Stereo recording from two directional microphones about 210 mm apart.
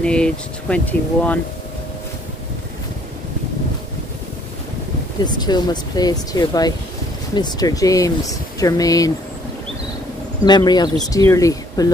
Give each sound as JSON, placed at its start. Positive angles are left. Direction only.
{"t": 0.0, "sound": "speech", "side_deg": 5}
{"t": 5.2, "sound": "speech", "side_deg": 20}
{"t": 10.4, "sound": "speech", "side_deg": 20}